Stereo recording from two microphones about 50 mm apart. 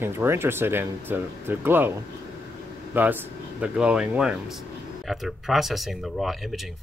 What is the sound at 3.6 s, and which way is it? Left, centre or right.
Speech, right.